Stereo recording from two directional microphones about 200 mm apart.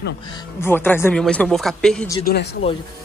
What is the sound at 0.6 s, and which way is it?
Speech, 10° left (ahead or behind).